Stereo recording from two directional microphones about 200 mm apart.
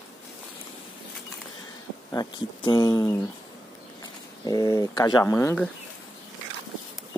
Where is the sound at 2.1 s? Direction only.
20° left (ahead or behind).